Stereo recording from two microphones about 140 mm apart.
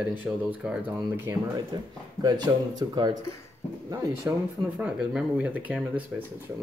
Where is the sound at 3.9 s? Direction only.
15° right (ahead or behind).